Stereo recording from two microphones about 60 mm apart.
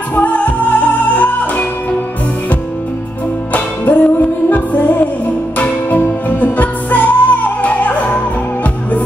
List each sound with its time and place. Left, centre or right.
0.1 s music: left
3.5 s music: left